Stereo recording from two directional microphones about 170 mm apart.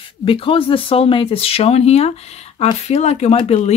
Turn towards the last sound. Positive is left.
turn(degrees=40)  # may be behind; listen again after turning